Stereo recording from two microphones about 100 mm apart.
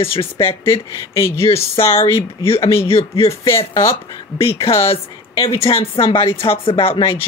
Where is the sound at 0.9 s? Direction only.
30° left (ahead or behind).